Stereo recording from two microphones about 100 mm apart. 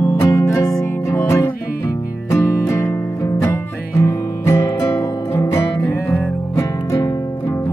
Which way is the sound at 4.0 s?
35° left (ahead or behind).